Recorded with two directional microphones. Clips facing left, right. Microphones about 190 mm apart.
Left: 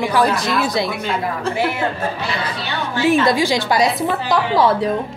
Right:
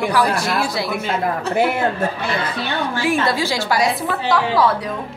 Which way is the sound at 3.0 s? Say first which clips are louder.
Left 6 dB; 20° left (ahead or behind).